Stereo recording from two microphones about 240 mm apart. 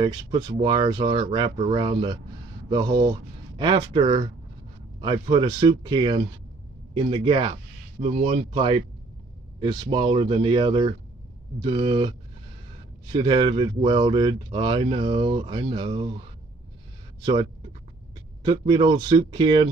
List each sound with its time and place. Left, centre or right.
0.0 s speech: centre
17.2 s speech: centre